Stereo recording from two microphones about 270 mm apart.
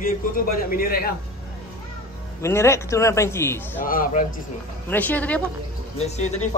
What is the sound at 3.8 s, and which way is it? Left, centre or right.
Speech, left.